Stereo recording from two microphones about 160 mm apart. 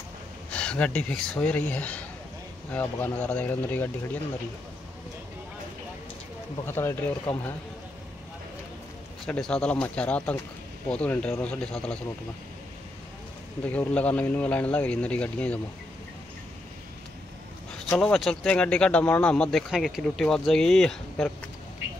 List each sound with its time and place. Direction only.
0.5 s speech: 5° left (ahead or behind)
6.6 s speech: 15° left (ahead or behind)
9.2 s speech: 5° left (ahead or behind)
13.7 s speech: 10° left (ahead or behind)
17.8 s speech: 5° left (ahead or behind)